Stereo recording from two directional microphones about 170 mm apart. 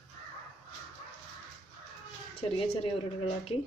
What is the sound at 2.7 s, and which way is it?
Speech, 35° left (ahead or behind).